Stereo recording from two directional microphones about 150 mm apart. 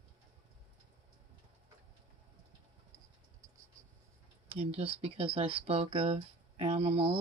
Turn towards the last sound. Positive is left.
turn(degrees=-40)  # may be behind; listen again after turning